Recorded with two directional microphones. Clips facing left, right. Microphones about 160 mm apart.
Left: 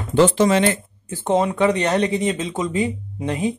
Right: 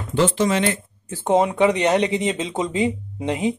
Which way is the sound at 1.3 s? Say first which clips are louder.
Right 1 dB; 20° right (ahead or behind).